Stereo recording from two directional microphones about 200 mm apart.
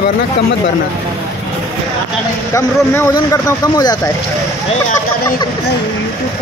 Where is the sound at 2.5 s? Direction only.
15° left (ahead or behind).